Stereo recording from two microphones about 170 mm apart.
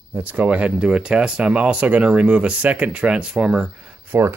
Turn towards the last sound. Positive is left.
turn(degrees=-10)  # may be behind; listen again after turning